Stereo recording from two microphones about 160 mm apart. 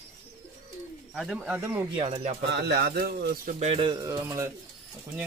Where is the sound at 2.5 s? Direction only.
90° right; by 3.5 s 75° right (ahead or behind).